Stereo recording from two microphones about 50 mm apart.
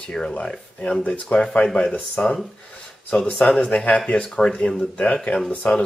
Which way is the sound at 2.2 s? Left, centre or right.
Left.